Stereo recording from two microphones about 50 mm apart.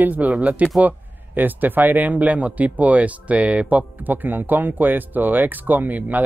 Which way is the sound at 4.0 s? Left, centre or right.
Right.